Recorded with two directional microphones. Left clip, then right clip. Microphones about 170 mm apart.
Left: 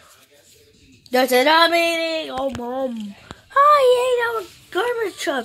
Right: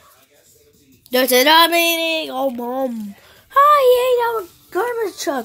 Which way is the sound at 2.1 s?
30° right (ahead or behind).